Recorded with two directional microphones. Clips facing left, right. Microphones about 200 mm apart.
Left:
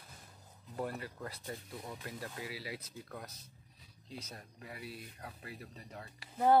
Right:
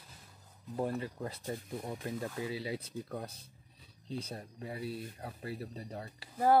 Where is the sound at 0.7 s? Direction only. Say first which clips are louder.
Right 5 dB; 25° right (ahead or behind).